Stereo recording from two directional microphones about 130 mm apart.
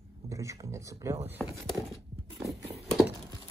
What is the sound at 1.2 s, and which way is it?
Speech, 15° right (ahead or behind).